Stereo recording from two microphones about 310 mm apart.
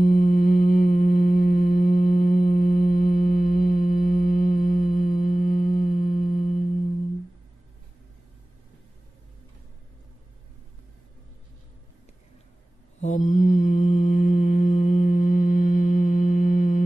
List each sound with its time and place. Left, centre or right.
0.0 s mantra: left
5.8 s music: left
13.0 s mantra: left